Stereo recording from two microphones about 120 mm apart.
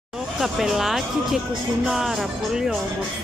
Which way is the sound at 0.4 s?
5° right (ahead or behind).